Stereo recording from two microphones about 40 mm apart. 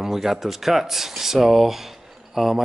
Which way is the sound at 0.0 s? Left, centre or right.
Centre.